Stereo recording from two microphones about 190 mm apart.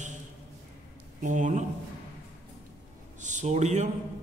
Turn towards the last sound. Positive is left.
turn(degrees=-40)  # may be behind; listen again after turning